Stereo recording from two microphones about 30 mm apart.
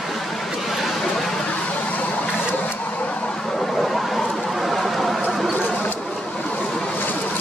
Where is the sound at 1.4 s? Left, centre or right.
Left.